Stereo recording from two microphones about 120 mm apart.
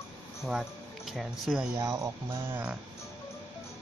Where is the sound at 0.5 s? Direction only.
Centre (ahead or behind).